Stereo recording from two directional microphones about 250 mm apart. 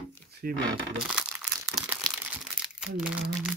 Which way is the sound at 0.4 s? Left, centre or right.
Right.